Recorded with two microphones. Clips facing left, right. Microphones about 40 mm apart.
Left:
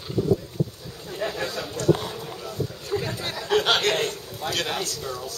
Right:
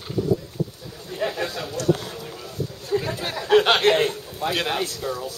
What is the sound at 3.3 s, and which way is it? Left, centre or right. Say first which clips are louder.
A man's voice: right 5 dB; centre.